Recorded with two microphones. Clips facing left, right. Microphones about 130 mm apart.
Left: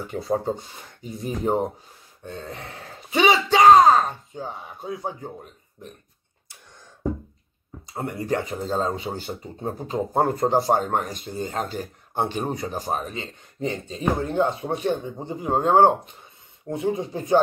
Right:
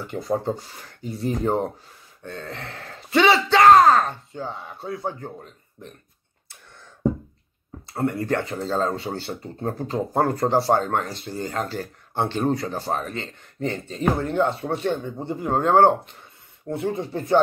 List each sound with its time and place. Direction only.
0.0 s speech: 15° left (ahead or behind)
7.8 s speech: 15° left (ahead or behind)